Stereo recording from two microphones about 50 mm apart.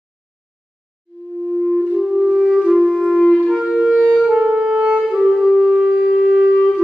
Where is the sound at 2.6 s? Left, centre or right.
Centre.